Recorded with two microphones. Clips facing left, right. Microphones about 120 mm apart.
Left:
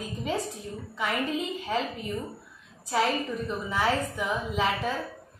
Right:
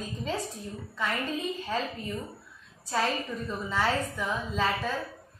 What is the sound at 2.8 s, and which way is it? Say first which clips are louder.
A woman's voice: left 3 dB; 15° left (ahead or behind).